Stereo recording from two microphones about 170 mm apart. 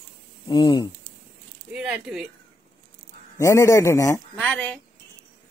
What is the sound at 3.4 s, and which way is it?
Speech, 15° left (ahead or behind).